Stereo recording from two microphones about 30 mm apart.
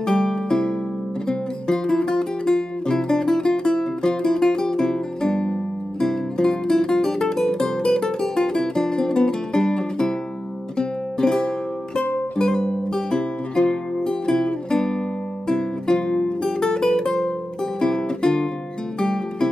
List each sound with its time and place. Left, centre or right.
0.0 s music: left